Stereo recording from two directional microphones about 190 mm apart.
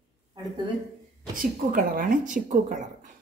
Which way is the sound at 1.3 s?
45° right (ahead or behind).